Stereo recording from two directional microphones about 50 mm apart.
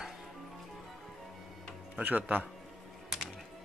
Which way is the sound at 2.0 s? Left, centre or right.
Right.